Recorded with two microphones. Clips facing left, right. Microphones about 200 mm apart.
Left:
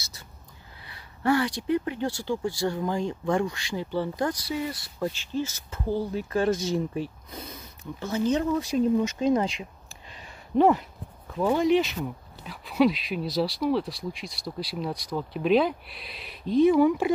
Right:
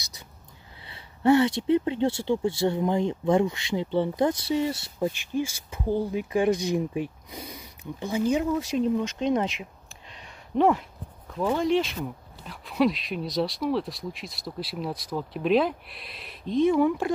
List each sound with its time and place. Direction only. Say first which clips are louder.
0.8 s speech: right 4 dB; 25° right (ahead or behind); by 17.1 s 5° left (ahead or behind)